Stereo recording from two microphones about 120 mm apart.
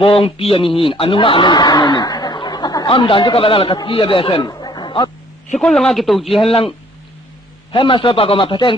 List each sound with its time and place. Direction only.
0.0 s a man's voice: 50° left (ahead or behind)
5.6 s speech: 5° left (ahead or behind)
6.4 s a man's voice: 55° left (ahead or behind)
7.7 s a man's voice: 45° left (ahead or behind)